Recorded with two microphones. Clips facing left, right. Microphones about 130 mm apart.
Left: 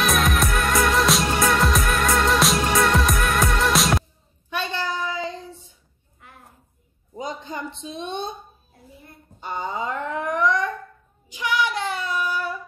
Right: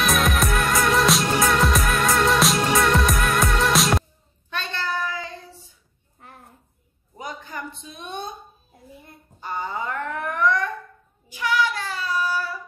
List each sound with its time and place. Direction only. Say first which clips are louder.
0.0 s music: even; centre (ahead or behind)
4.5 s child singing: left 2 dB; 15° left (ahead or behind)
7.2 s a sound: left 3 dB; 20° left (ahead or behind)
9.4 s wail: left 1 dB; 20° left (ahead or behind)
11.2 s child singing: right 1 dB; 20° left (ahead or behind)